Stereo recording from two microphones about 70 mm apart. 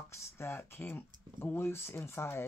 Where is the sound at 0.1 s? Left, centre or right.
Left.